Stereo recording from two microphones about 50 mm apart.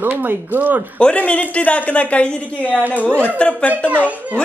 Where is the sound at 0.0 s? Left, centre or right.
Right.